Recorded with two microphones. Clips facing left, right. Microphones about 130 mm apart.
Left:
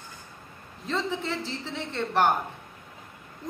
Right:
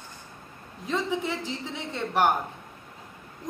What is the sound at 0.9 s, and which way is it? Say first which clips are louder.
A woman's voice: right 1 dB; 15° right (ahead or behind).